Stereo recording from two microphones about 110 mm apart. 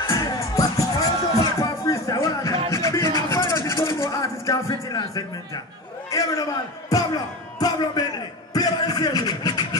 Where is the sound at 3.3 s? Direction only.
25° left (ahead or behind).